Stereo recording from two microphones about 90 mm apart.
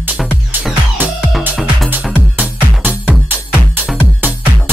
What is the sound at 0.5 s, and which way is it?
Music, 20° right (ahead or behind).